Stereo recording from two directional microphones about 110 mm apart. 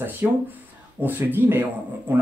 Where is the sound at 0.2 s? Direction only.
20° right (ahead or behind).